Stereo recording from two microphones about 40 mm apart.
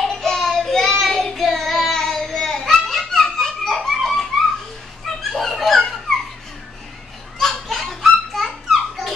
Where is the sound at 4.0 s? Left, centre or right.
Centre.